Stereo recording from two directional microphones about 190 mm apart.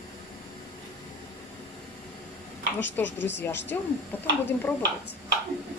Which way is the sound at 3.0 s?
70° left (ahead or behind).